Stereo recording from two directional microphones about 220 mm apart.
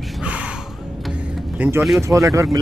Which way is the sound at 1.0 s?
5° right (ahead or behind).